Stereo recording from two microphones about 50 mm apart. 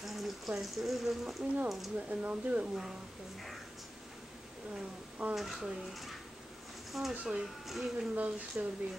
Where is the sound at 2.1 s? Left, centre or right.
Right.